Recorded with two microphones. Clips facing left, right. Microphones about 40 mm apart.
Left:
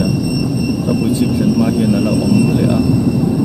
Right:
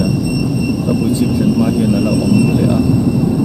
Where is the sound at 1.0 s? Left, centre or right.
Centre.